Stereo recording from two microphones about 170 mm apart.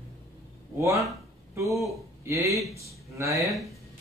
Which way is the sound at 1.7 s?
Centre (ahead or behind).